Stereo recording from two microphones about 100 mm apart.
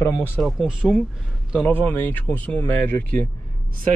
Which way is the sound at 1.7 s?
20° left (ahead or behind).